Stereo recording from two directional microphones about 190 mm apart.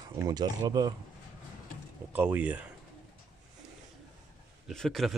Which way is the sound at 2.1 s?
10° right (ahead or behind).